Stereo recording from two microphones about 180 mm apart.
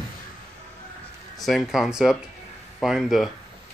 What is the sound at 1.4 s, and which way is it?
Speech, centre (ahead or behind).